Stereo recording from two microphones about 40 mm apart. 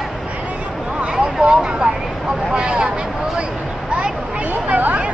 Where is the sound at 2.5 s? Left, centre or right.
Centre.